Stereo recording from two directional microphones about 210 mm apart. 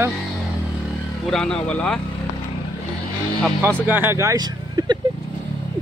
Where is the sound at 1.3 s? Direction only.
5° left (ahead or behind).